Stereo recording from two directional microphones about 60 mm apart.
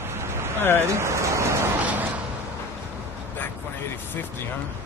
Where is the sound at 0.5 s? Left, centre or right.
Left.